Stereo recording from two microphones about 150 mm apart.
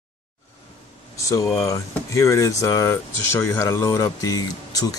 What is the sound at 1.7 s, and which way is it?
Speech, 20° left (ahead or behind).